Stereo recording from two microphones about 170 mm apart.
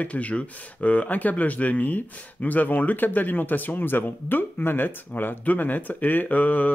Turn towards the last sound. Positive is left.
turn(degrees=10)  # may be behind; listen again after turning